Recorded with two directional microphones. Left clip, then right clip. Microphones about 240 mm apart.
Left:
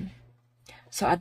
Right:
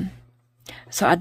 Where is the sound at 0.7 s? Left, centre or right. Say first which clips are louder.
Right 6 dB; right.